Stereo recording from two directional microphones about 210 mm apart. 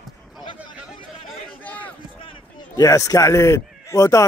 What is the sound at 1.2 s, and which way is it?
Chatter, 5° left (ahead or behind).